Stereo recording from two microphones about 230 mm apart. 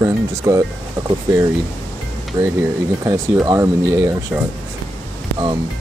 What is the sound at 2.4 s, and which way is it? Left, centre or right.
Speech, centre.